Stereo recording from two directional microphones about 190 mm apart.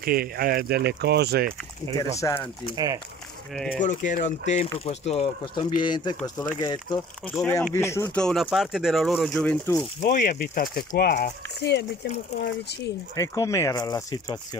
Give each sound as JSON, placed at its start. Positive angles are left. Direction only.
{"t": 0.0, "sound": "speech", "side_deg": -50}
{"t": 2.0, "sound": "speech", "side_deg": 15}
{"t": 2.7, "sound": "speech", "side_deg": -20}
{"t": 3.5, "sound": "speech", "side_deg": 0}
{"t": 3.8, "sound": "speech", "side_deg": 40}
{"t": 10.0, "sound": "speech", "side_deg": 50}
{"t": 13.1, "sound": "speech", "side_deg": 15}